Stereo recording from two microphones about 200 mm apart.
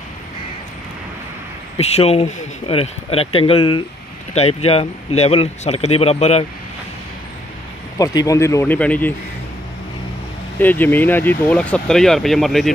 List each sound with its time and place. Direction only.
1.8 s speech: 30° left (ahead or behind)
8.0 s speech: 20° left (ahead or behind)
10.6 s speech: 10° left (ahead or behind)